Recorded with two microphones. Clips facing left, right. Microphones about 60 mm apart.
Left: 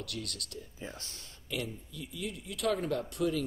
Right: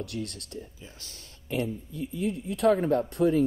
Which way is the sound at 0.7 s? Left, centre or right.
Left.